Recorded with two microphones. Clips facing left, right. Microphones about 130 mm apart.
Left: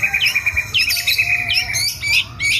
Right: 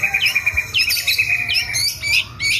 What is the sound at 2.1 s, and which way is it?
Bird, 30° right (ahead or behind).